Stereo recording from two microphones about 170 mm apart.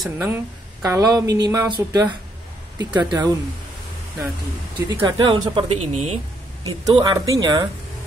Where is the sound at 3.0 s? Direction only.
25° right (ahead or behind).